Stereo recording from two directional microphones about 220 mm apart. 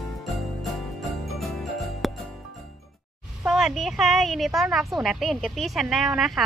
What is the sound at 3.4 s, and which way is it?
Speech, centre (ahead or behind).